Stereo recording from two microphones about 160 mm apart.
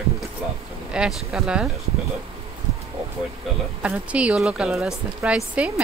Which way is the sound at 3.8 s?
10° right (ahead or behind).